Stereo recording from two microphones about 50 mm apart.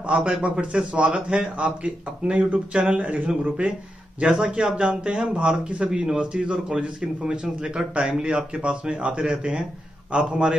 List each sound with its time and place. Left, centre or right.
0.1 s a man's voice: right